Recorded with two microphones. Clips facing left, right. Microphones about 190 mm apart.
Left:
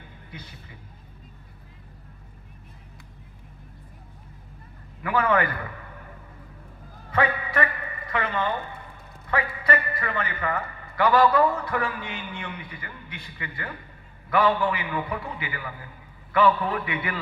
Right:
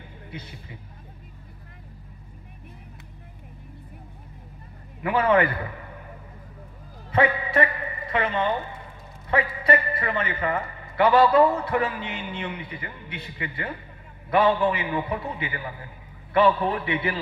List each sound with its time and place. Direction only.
0.3 s a man's voice: 20° right (ahead or behind)
5.0 s a man's voice: 25° right (ahead or behind)
7.1 s a man's voice: 25° right (ahead or behind)